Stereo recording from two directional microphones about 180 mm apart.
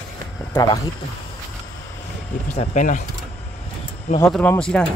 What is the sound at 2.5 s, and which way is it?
Speech, 45° left (ahead or behind).